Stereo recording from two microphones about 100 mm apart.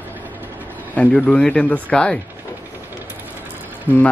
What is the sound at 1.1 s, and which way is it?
Speech, 10° left (ahead or behind).